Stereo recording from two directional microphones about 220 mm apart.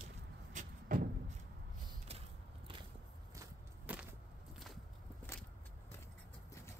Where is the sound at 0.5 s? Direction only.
40° right (ahead or behind).